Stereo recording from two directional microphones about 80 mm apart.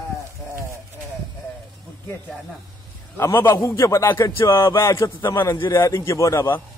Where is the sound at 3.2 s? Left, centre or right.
Left.